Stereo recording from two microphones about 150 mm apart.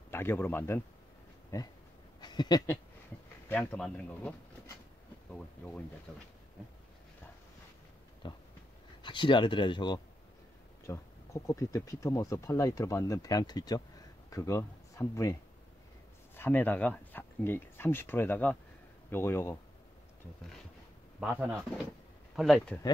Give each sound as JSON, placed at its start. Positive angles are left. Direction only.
{"t": 0.1, "sound": "speech", "side_deg": 15}
{"t": 3.4, "sound": "speech", "side_deg": 10}
{"t": 6.1, "sound": "speech", "side_deg": 0}
{"t": 8.2, "sound": "speech", "side_deg": 30}
{"t": 16.3, "sound": "speech", "side_deg": 15}
{"t": 21.2, "sound": "speech", "side_deg": -5}